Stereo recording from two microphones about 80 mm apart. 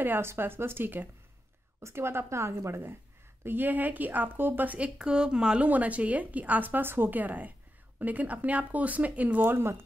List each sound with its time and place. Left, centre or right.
0.0 s a woman's voice: right
9.4 s speech: right